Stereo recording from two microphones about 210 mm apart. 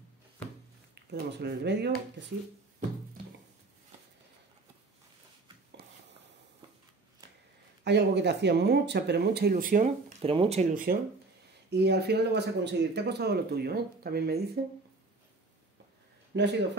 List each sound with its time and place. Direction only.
0.9 s speech: 50° right (ahead or behind)
7.8 s speech: 55° right (ahead or behind); by 11.0 s 35° right (ahead or behind)
11.7 s speech: 50° right (ahead or behind)
16.3 s speech: 55° right (ahead or behind)